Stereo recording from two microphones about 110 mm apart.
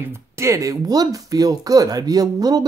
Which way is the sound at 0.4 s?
30° right (ahead or behind).